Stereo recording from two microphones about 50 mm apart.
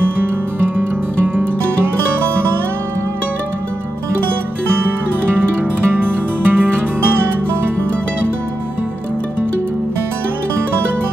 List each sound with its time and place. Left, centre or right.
1.2 s music: right
5.9 s music: right